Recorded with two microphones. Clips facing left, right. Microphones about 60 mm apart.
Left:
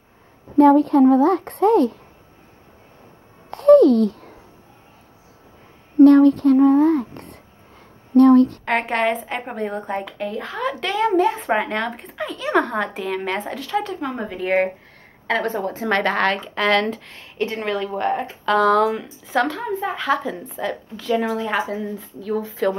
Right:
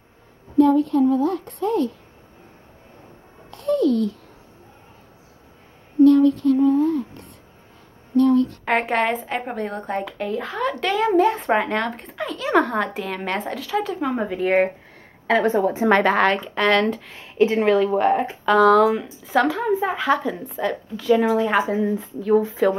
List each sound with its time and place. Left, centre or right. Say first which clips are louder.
0.6 s a woman's voice: left 4 dB; left
3.4 s a sound: left 9 dB; left
5.9 s a woman's voice: left 3 dB; left
8.6 s a woman's voice: even; centre
15.4 s a woman's voice: right 5 dB; centre